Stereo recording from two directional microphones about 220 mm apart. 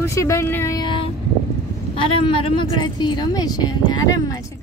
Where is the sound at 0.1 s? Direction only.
15° left (ahead or behind).